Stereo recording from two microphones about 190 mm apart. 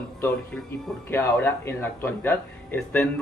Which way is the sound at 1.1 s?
10° left (ahead or behind).